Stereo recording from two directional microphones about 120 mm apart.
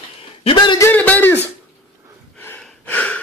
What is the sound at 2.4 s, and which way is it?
Gasp, 15° left (ahead or behind).